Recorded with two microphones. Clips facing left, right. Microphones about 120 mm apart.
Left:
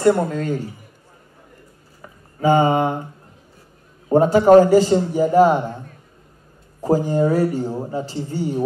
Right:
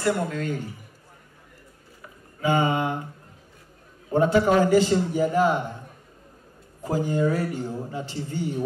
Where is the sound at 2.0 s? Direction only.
40° left (ahead or behind).